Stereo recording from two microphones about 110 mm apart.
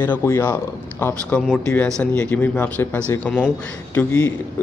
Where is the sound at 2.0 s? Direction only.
15° left (ahead or behind).